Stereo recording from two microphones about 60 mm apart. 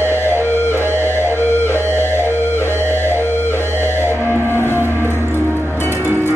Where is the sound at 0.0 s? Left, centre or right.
Left.